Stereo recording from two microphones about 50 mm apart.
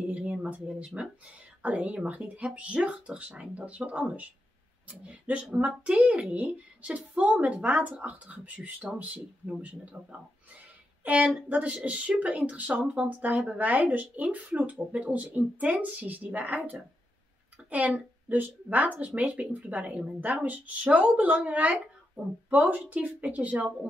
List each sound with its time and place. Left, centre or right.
0.2 s speech: right